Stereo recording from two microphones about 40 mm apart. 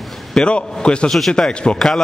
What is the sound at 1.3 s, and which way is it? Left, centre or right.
Speech, left.